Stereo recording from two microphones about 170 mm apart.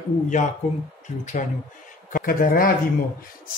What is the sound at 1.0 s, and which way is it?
Speech, 45° left (ahead or behind).